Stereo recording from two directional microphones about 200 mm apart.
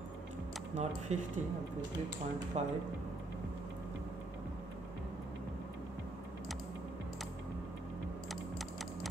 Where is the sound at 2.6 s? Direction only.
35° right (ahead or behind).